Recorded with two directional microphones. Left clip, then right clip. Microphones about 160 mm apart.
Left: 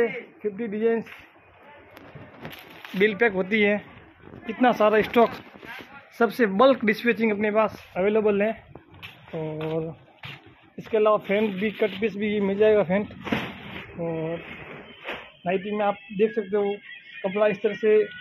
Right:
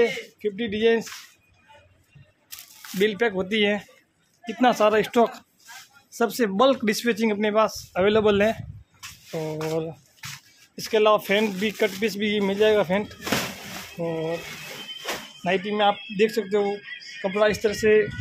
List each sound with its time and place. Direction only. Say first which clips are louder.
0.4 s speech: right 2 dB; 30° right (ahead or behind)
3.0 s speech: left 1 dB; 5° right (ahead or behind)
6.9 s speech: left 1 dB; 15° right (ahead or behind)
7.9 s a man's voice: right 3 dB; 35° right (ahead or behind)
10.8 s speech: right 2 dB; 25° right (ahead or behind)
14.0 s speech: right 2 dB; 20° right (ahead or behind)
15.4 s speech: right 3 dB; 25° right (ahead or behind)